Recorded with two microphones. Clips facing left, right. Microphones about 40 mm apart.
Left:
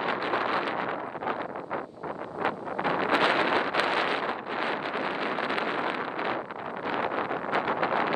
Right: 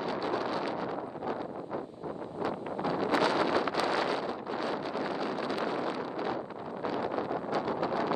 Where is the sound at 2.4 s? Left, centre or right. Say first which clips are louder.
Left 4 dB; left.